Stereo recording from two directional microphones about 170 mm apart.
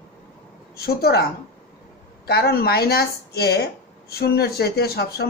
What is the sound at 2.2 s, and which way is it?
A woman's voice, 70° left (ahead or behind).